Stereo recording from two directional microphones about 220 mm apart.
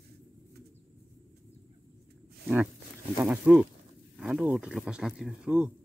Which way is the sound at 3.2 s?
5° right (ahead or behind).